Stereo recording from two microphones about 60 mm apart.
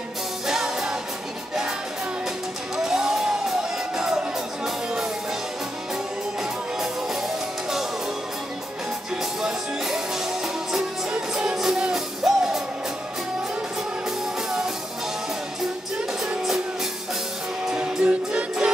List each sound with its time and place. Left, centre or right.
0.5 s music: centre
2.8 s music: centre
9.4 s music: centre
17.6 s music: centre